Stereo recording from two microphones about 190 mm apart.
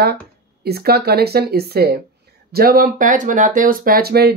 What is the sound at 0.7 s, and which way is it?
Speech, 55° right (ahead or behind).